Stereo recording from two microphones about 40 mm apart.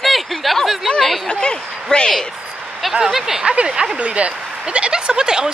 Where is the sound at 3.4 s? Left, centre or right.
Right.